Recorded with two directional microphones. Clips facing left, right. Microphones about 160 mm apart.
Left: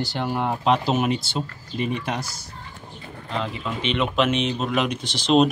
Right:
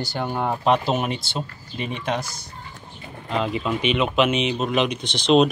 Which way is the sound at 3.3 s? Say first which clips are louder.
Right 5 dB; 15° right (ahead or behind).